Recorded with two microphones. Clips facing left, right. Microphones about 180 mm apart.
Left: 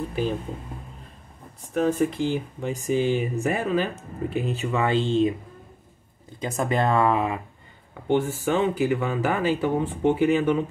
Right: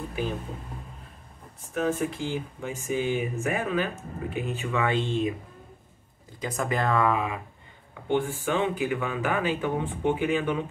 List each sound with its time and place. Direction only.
1.7 s speech: 35° left (ahead or behind)
6.4 s speech: 25° left (ahead or behind); by 10.6 s 40° left (ahead or behind)